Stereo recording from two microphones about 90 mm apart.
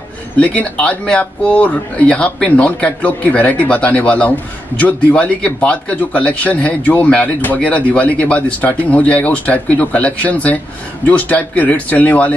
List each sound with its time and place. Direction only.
0.4 s speech: 15° left (ahead or behind)